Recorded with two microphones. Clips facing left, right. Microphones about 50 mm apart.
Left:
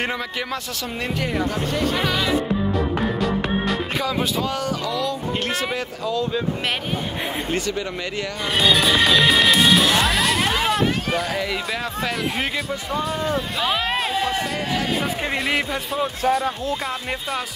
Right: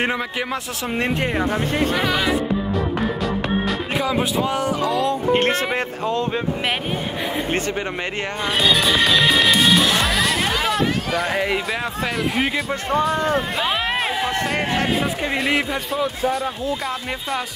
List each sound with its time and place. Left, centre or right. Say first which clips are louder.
0.9 s speech: right 3 dB; right
2.0 s music: right 1 dB; centre
2.7 s music: even; centre
4.0 s speech: right 2 dB; right
8.5 s music: left 1 dB; centre
11.3 s speech: right 4 dB; right